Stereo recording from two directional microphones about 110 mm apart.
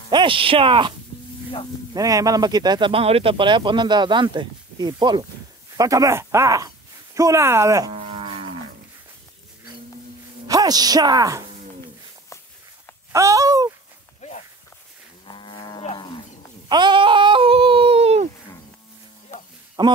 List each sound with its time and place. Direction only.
0.1 s speech: 50° right (ahead or behind)
2.0 s speech: 30° right (ahead or behind)
2.9 s speech: 60° right (ahead or behind); by 5.2 s 40° right (ahead or behind)
5.8 s speech: 30° right (ahead or behind)
7.9 s livestock: 65° right (ahead or behind)
10.4 s a woman's voice: 35° right (ahead or behind)
13.1 s speech: 30° right (ahead or behind)
14.2 s walk: 90° left
15.2 s cattle: 50° left (ahead or behind)
16.6 s a sound: 45° right (ahead or behind); by 18.3 s 75° right (ahead or behind)
19.8 s speech: 45° right (ahead or behind)